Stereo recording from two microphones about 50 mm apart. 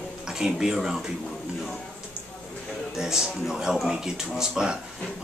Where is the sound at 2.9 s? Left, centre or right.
Centre.